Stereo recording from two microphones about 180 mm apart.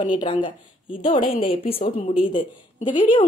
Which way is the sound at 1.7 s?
30° left (ahead or behind).